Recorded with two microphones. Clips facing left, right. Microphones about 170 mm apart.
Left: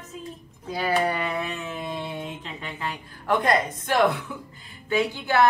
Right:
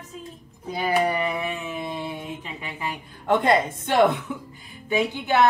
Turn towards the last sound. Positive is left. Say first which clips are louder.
# right 1 dB
turn(degrees=-20)  # may be behind; listen again after turning